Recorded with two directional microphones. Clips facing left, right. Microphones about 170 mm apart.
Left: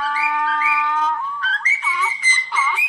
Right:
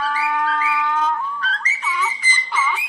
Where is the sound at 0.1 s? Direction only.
40° right (ahead or behind).